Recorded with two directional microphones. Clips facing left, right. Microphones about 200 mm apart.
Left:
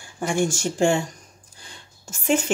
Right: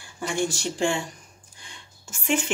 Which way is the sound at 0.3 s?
45° left (ahead or behind).